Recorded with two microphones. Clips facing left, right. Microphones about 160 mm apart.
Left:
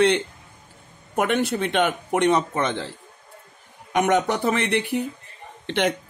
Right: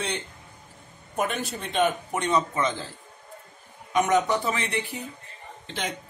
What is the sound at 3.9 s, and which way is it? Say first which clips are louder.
A man's voice: left 2 dB; 65° left (ahead or behind).